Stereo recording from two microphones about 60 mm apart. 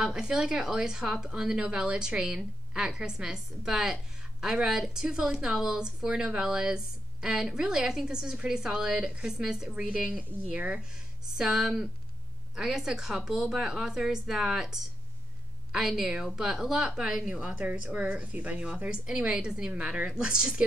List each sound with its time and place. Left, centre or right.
0.0 s a woman's voice: centre